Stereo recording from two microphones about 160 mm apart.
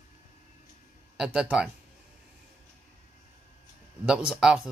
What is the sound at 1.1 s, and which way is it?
Speech, 5° right (ahead or behind).